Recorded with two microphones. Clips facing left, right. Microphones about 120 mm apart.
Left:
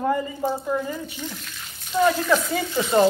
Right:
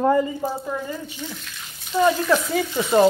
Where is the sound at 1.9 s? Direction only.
Centre (ahead or behind).